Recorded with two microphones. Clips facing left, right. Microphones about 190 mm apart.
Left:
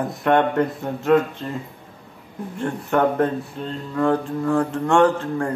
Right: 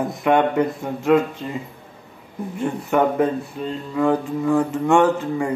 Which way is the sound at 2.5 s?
5° right (ahead or behind).